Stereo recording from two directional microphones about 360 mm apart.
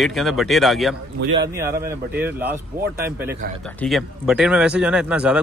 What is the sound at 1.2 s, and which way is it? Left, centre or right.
Speech, right.